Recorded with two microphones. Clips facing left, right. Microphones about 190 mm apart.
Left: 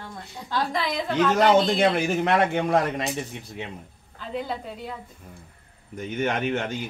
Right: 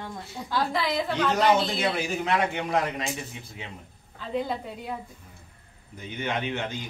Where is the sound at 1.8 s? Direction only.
55° left (ahead or behind).